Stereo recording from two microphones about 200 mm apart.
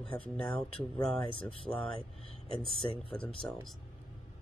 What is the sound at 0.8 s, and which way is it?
Speech, 25° left (ahead or behind).